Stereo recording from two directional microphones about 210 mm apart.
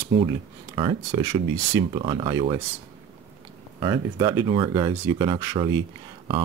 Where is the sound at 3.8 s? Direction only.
20° right (ahead or behind).